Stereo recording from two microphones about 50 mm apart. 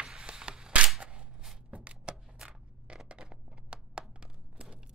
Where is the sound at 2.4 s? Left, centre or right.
Centre.